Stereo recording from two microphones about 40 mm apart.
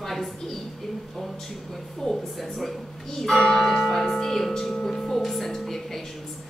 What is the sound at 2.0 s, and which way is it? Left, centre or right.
A woman's voice, centre.